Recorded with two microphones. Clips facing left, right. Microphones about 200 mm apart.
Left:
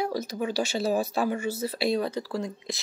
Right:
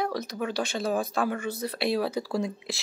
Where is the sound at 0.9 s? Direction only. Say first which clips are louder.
Left 1 dB; 5° left (ahead or behind); by 2.5 s 10° right (ahead or behind).